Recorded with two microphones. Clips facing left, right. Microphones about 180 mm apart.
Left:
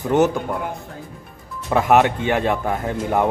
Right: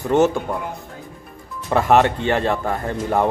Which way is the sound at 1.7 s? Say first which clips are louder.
Even; 5° left (ahead or behind).